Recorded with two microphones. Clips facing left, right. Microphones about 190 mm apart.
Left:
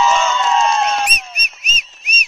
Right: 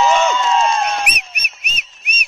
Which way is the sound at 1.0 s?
70° right (ahead or behind).